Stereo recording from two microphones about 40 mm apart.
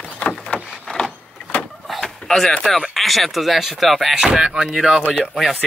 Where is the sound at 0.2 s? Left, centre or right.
Left.